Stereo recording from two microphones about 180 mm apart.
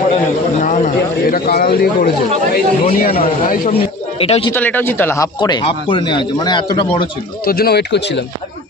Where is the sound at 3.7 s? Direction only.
35° left (ahead or behind).